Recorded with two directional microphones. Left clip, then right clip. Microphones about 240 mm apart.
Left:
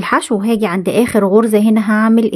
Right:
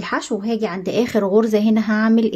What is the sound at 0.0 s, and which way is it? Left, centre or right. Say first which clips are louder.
A woman's voice: left 8 dB; left.